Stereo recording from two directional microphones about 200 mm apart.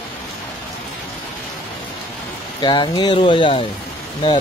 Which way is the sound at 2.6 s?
20° left (ahead or behind).